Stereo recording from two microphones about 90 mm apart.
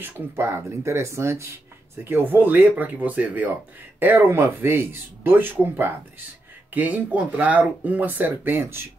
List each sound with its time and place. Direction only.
0.0 s speech: 30° right (ahead or behind)